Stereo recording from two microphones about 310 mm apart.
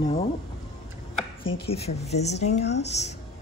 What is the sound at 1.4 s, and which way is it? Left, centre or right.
Speech, centre.